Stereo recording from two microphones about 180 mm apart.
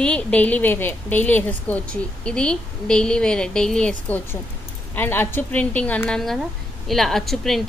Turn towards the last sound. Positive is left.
turn(degrees=0)  # may be behind; listen again after turning